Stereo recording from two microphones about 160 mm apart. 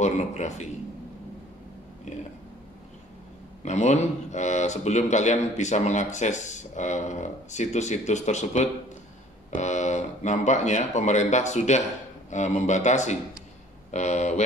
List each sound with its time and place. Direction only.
0.0 s a man's voice: 45° left (ahead or behind)
2.1 s a man's voice: 45° left (ahead or behind)
3.6 s a man's voice: 45° left (ahead or behind)